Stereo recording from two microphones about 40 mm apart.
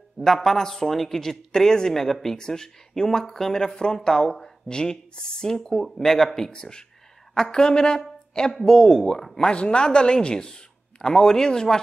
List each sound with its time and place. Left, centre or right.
0.2 s a woman's voice: centre
9.5 s a man's voice: left